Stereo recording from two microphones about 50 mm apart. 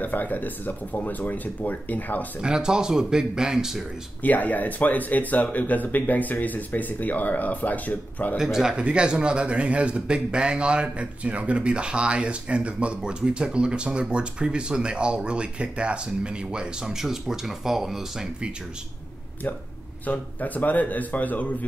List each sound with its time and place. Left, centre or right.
0.0 s speech: left
2.4 s speech: centre
4.2 s speech: left
8.4 s speech: centre
8.7 s speech: right
20.1 s speech: left